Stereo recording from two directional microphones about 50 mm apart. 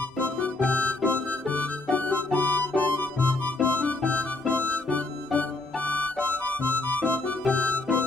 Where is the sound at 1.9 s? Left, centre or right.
Left.